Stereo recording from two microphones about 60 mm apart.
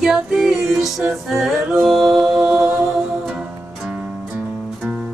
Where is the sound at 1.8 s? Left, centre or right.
Centre.